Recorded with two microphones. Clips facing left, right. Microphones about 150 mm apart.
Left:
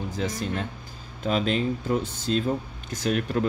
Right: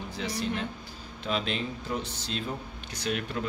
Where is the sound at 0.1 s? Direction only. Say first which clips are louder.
Even; 45° left (ahead or behind).